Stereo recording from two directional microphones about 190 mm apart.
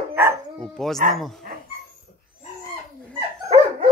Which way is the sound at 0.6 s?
Centre (ahead or behind).